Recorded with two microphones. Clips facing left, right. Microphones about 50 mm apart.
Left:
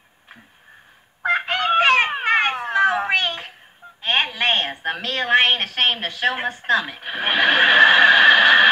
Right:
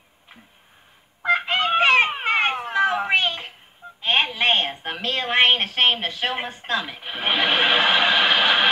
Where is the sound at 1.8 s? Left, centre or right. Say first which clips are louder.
Left 1 dB; left.